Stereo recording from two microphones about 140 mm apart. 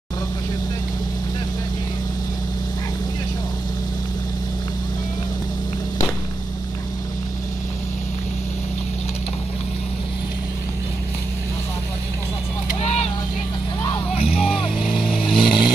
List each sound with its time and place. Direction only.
14.1 s music: 45° left (ahead or behind)
15.2 s vehicle: 35° left (ahead or behind)